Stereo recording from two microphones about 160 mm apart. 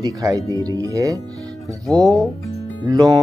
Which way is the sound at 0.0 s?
20° right (ahead or behind).